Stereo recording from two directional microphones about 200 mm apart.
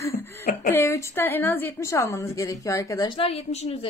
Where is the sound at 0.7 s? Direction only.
15° left (ahead or behind).